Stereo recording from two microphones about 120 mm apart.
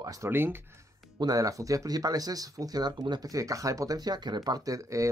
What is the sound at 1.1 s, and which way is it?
Speech, 30° right (ahead or behind).